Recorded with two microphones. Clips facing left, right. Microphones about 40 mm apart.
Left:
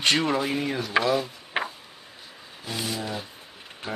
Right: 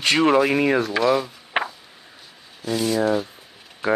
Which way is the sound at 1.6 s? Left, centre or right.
Right.